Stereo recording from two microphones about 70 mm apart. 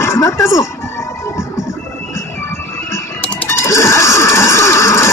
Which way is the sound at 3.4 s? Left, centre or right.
Left.